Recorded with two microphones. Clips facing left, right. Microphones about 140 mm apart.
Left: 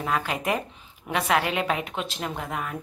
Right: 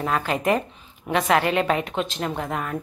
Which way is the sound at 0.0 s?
5° left (ahead or behind).